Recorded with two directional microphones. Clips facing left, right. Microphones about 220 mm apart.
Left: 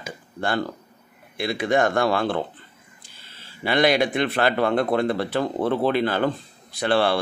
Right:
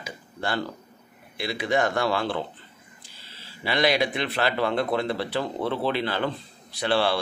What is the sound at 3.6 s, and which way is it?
A man's voice, 50° left (ahead or behind).